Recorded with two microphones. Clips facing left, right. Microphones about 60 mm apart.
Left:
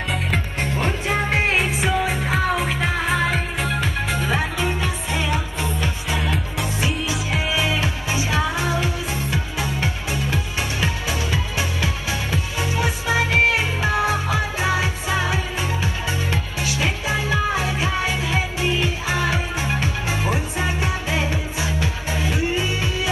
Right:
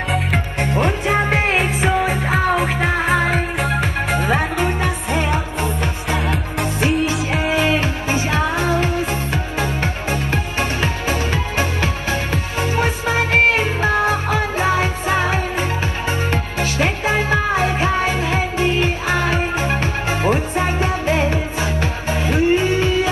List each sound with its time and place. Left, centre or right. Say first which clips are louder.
0.3 s music: right 4 dB; right